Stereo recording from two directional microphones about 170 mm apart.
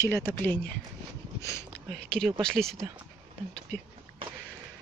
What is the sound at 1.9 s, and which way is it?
Speech, 5° left (ahead or behind).